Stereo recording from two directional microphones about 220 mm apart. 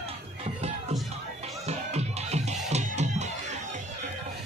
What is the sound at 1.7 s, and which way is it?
Music, 30° right (ahead or behind).